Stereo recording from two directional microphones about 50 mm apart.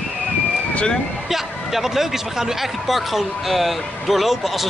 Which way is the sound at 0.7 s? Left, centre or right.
Centre.